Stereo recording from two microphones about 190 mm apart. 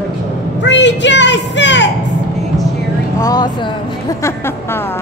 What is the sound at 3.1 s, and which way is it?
Speech, 20° left (ahead or behind).